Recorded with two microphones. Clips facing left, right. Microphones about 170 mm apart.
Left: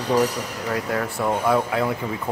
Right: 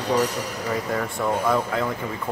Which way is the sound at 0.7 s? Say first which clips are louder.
Left 1 dB; centre (ahead or behind).